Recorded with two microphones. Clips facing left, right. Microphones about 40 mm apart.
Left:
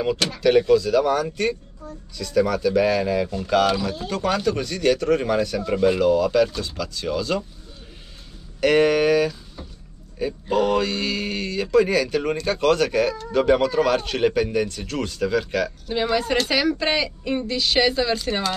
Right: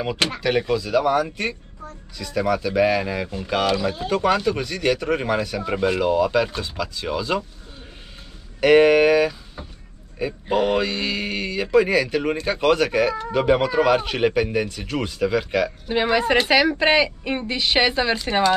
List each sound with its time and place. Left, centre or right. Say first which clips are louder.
0.4 s speech: left 9 dB; centre
8.5 s a woman's voice: right 4 dB; centre